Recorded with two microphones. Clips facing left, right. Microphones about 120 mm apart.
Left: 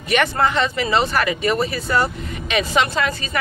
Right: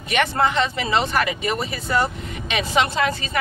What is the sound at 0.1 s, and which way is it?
Speech, 20° right (ahead or behind).